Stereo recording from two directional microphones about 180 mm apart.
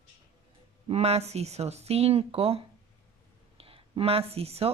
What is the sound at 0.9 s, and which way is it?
Speech, 35° right (ahead or behind).